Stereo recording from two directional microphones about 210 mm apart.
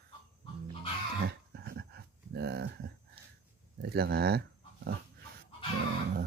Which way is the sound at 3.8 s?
50° right (ahead or behind).